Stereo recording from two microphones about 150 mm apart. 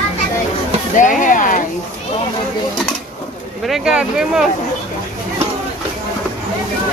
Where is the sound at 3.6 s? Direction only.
5° right (ahead or behind).